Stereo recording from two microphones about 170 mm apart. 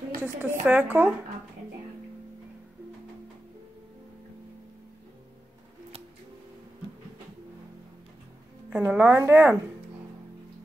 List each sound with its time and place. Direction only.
0.2 s a woman's voice: 10° right (ahead or behind)
8.6 s a woman's voice: 5° right (ahead or behind)